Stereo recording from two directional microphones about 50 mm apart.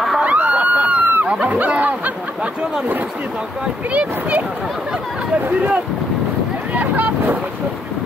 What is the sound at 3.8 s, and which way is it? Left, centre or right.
Speech, right.